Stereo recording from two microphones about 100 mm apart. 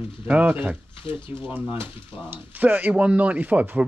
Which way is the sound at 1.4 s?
20° right (ahead or behind).